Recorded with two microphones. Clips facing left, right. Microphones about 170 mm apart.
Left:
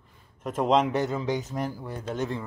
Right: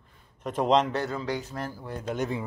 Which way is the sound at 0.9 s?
20° left (ahead or behind).